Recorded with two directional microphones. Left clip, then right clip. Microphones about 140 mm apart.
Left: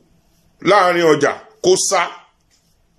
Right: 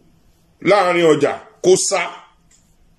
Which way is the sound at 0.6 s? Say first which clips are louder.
Left 1 dB; 20° right (ahead or behind).